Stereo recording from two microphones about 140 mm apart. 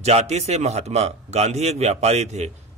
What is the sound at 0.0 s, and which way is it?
A man's voice, 50° right (ahead or behind).